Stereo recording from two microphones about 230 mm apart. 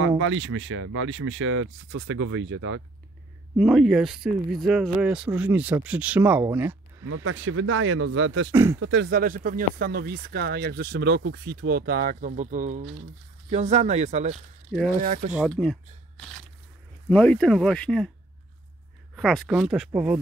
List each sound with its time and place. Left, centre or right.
0.2 s speech: right
3.5 s speech: centre
7.2 s speech: right
14.3 s speech: centre
15.0 s speech: right
15.3 s speech: centre
19.1 s speech: centre